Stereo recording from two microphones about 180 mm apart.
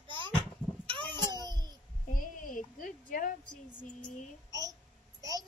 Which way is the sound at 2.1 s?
50° left (ahead or behind).